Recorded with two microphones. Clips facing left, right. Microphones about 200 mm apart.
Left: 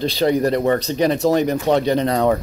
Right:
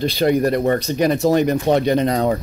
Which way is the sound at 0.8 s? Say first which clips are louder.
Even; 10° right (ahead or behind).